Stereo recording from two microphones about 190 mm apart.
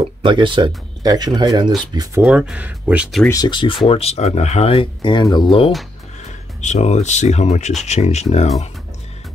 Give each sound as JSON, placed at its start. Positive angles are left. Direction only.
{"t": 0.0, "sound": "speech", "side_deg": -25}
{"t": 2.2, "sound": "speech", "side_deg": -5}
{"t": 3.3, "sound": "speech", "side_deg": 20}
{"t": 6.2, "sound": "speech", "side_deg": 35}